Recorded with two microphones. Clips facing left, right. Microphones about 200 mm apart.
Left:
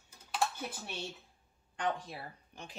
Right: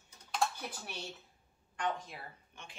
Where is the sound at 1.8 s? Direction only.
35° left (ahead or behind).